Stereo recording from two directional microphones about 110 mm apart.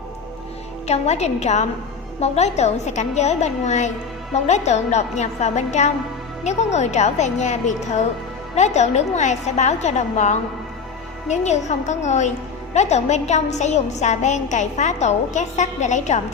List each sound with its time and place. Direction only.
0.8 s a woman's voice: 80° left
2.1 s a woman's voice: 80° left